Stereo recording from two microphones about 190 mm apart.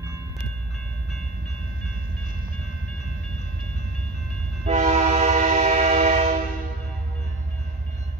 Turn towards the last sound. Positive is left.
turn(degrees=-35)  # may be behind; listen again after turning